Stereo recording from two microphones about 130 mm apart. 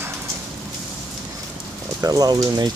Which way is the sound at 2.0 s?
30° right (ahead or behind).